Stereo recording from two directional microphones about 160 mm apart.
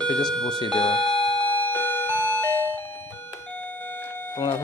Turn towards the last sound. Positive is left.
turn(degrees=10)  # may be behind; listen again after turning